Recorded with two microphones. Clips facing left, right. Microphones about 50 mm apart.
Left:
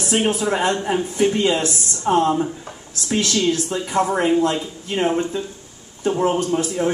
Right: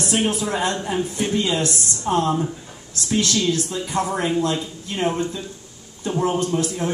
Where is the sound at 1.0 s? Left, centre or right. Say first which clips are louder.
Left 4 dB; centre.